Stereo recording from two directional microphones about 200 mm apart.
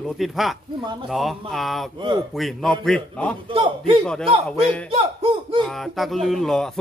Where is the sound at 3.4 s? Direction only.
25° right (ahead or behind).